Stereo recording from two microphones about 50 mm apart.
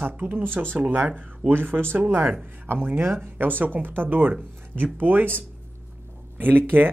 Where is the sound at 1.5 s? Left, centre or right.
Right.